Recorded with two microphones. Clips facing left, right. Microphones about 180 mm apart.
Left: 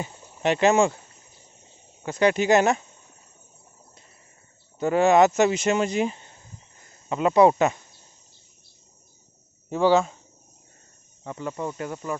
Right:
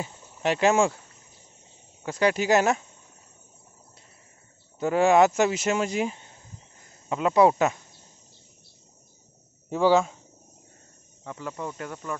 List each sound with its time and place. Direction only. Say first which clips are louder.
0.0 s speech: left 2 dB; 5° right (ahead or behind)
2.0 s speech: left 3 dB; 5° right (ahead or behind)
4.7 s speech: left 1 dB; 5° right (ahead or behind)
9.7 s speech: left 1 dB; 10° right (ahead or behind)
11.5 s speech: left 4 dB; 5° left (ahead or behind)